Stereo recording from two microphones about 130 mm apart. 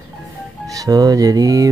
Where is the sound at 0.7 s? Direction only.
30° right (ahead or behind).